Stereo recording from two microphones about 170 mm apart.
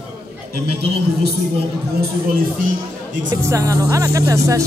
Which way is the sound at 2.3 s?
60° right (ahead or behind).